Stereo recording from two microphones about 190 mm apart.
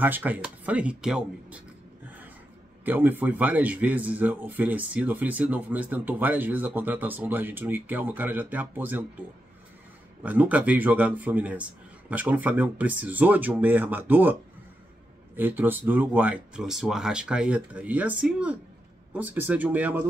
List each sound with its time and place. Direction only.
0.0 s speech: 10° right (ahead or behind)
2.8 s speech: 10° right (ahead or behind)
10.2 s speech: 10° right (ahead or behind)
15.3 s speech: 10° right (ahead or behind)